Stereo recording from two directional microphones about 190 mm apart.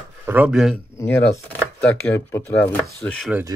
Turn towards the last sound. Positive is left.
turn(degrees=5)  # may be behind; listen again after turning